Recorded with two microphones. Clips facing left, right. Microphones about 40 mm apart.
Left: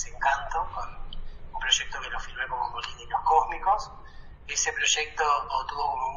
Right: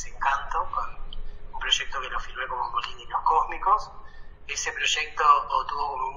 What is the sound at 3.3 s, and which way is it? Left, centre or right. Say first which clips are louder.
A man's voice: right 1 dB; right.